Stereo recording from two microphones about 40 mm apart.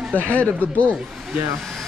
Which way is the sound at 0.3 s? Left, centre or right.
Left.